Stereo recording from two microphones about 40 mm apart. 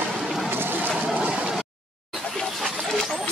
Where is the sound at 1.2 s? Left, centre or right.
Right.